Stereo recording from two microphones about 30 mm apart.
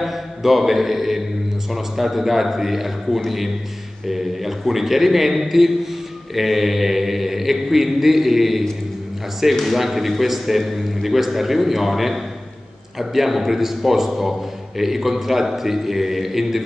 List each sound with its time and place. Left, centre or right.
0.0 s a man's voice: centre
9.7 s a man's voice: centre